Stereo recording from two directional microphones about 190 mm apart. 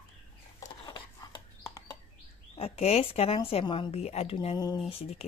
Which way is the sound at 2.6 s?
35° left (ahead or behind).